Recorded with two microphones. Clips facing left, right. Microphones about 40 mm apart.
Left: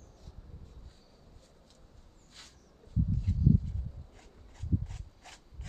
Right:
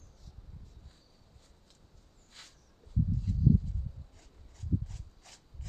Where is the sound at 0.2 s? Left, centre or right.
Left.